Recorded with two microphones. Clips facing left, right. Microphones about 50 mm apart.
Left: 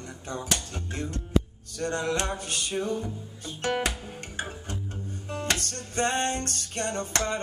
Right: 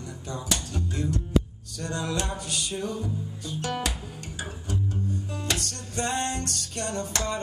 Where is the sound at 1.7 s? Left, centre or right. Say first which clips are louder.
Left 2 dB; left.